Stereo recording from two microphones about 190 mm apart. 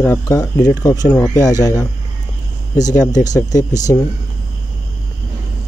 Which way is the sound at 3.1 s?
20° left (ahead or behind).